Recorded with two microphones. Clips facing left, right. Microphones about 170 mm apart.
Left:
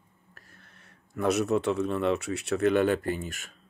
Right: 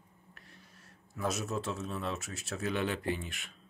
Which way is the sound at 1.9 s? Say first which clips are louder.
Left 11 dB; 75° left (ahead or behind).